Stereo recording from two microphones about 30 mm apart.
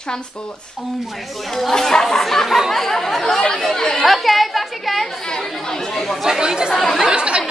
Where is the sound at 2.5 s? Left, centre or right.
Centre.